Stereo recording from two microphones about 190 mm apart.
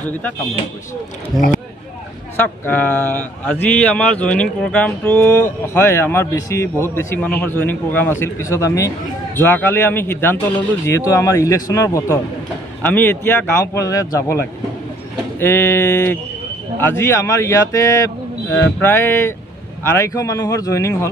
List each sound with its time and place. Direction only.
2.3 s a man's voice: 10° left (ahead or behind)